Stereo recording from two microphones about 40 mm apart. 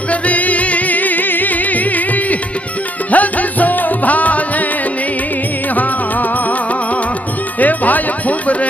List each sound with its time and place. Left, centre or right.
0.1 s music: left
3.1 s music: left
7.6 s a sound: left